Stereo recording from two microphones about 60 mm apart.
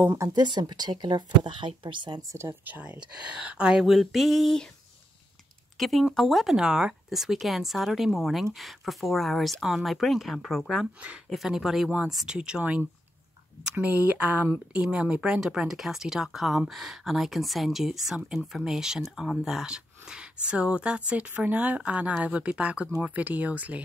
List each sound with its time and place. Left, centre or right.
0.2 s speech: right
0.6 s speech: right
2.2 s speech: right
2.6 s speech: right
3.8 s speech: centre
5.8 s speech: centre
12.4 s speech: centre